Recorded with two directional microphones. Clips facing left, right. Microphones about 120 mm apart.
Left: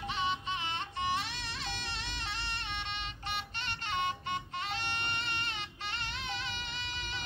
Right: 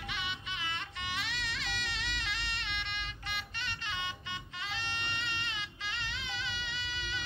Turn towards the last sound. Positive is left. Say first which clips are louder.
# right 1 dB
turn(degrees=45)  # may be behind; listen again after turning